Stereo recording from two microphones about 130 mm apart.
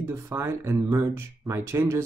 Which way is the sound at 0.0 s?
20° right (ahead or behind).